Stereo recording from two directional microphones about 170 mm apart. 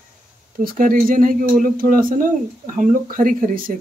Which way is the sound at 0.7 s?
50° right (ahead or behind).